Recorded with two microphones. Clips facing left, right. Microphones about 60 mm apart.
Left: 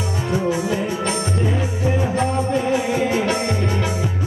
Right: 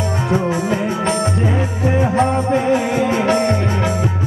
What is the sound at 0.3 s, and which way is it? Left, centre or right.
Music, right.